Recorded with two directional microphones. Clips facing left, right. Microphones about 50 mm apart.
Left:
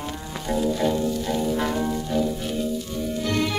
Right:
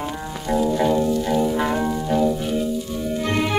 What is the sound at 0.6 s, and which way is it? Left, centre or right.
Music, right.